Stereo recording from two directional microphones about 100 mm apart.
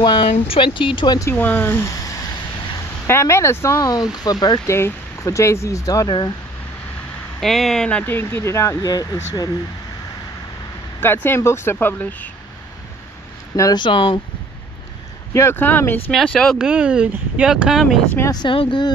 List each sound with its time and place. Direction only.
0.0 s speech: 55° left (ahead or behind)
1.3 s speech: 20° left (ahead or behind)
3.8 s speech: 40° left (ahead or behind)
4.6 s speech: 25° left (ahead or behind)
7.3 s speech: 5° left (ahead or behind)
8.0 s speech: 20° left (ahead or behind); by 9.5 s 40° left (ahead or behind)
11.2 s speech: 25° left (ahead or behind)
13.7 s speech: 55° left (ahead or behind)
15.3 s speech: 25° left (ahead or behind)
16.1 s speech: 5° left (ahead or behind)
16.5 s speech: 10° right (ahead or behind)
18.3 s speech: 45° left (ahead or behind)